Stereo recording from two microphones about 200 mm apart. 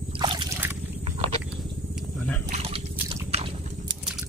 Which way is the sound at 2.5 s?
30° right (ahead or behind).